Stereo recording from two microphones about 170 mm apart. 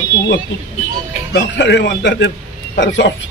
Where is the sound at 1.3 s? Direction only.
90° left.